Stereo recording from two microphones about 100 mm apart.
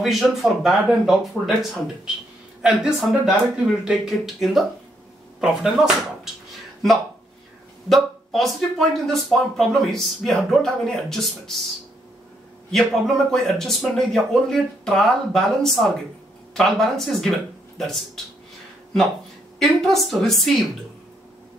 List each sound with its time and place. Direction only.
0.0 s speech: 5° right (ahead or behind)
7.9 s speech: centre (ahead or behind)
12.7 s speech: 5° left (ahead or behind)
19.6 s speech: 5° left (ahead or behind)